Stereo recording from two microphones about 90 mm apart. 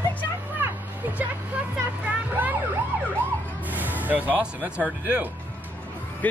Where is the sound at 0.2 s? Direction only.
20° right (ahead or behind).